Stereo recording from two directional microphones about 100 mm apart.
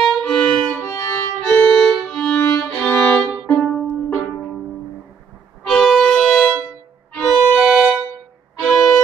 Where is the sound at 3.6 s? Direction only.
10° left (ahead or behind).